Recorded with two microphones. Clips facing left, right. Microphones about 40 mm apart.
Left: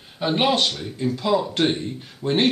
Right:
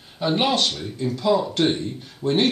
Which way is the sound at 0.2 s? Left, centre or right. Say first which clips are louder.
Left 1 dB; centre.